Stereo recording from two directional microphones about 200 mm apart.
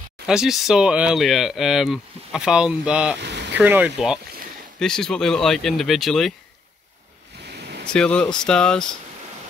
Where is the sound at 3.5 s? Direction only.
10° right (ahead or behind).